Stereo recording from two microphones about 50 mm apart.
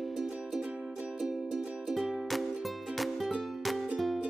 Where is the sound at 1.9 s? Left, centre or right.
Centre.